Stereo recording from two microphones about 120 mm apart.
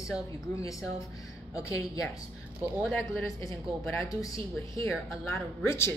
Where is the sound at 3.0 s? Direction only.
25° left (ahead or behind).